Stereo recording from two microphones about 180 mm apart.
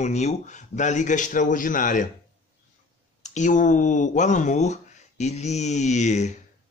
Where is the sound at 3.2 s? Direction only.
40° left (ahead or behind).